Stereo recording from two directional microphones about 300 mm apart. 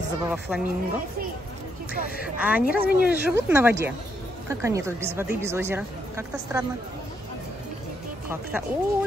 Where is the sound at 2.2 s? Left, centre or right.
Centre.